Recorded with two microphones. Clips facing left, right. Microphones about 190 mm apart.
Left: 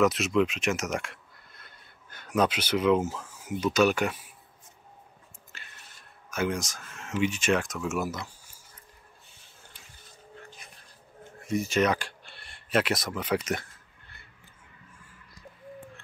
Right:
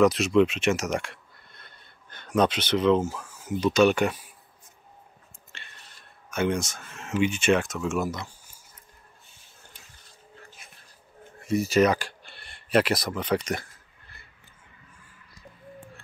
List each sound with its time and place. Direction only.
0.0 s speech: centre (ahead or behind)
3.0 s speech: 20° left (ahead or behind)
3.6 s speech: 5° left (ahead or behind)
5.5 s a sound: 5° left (ahead or behind)
6.3 s speech: 5° left (ahead or behind)
11.7 s speech: centre (ahead or behind)